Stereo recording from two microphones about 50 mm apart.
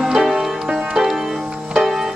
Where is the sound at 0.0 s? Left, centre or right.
Centre.